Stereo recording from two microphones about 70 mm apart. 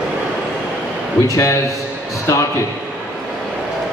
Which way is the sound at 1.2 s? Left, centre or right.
Left.